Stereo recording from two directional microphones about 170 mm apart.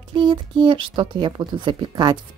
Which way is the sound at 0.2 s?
25° right (ahead or behind).